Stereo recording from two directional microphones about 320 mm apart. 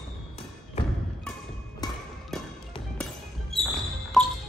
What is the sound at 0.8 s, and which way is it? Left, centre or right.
Thump, centre.